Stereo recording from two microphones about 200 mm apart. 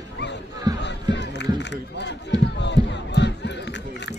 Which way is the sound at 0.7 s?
20° right (ahead or behind).